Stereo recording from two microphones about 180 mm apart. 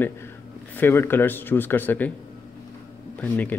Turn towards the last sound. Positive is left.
turn(degrees=10)  # may be behind; listen again after turning